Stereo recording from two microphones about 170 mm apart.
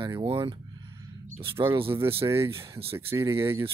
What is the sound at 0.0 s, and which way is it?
Speech, 30° right (ahead or behind).